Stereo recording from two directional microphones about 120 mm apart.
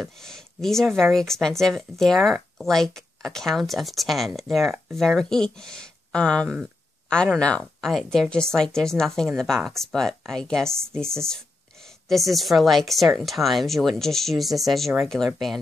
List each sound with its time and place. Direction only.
0.0 s speech: 5° left (ahead or behind)